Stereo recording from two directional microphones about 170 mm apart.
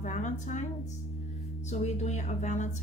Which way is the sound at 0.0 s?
45° left (ahead or behind).